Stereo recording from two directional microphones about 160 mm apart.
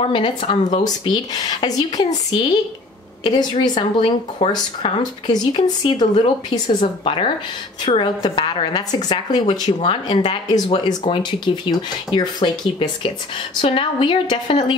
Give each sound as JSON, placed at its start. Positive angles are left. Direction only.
{"t": 0.0, "sound": "a woman's voice", "side_deg": 35}
{"t": 9.8, "sound": "a woman's voice", "side_deg": 35}